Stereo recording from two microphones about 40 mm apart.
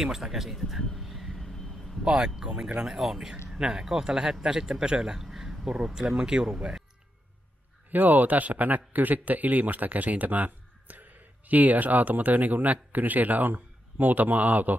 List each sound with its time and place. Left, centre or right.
0.0 s speech: centre
0.9 s vehicle: centre
2.0 s speech: centre
7.9 s a man's voice: right